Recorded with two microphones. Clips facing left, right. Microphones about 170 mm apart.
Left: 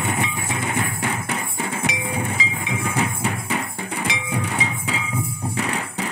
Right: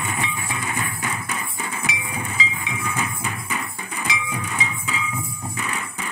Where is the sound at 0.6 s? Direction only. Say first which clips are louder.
Left 5 dB; 60° left (ahead or behind).